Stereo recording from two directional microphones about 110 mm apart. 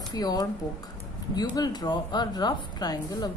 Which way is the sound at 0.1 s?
35° left (ahead or behind).